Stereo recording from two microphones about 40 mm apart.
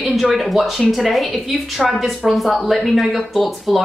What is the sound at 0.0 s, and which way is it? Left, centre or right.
A woman's voice, centre.